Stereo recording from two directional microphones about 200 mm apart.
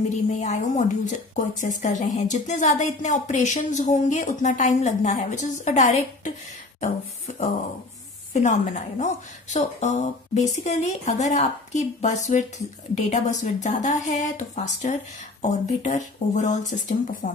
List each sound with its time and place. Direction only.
0.1 s a woman's voice: 35° left (ahead or behind)